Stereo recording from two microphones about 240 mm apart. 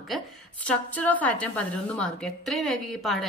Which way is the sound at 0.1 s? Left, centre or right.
Centre.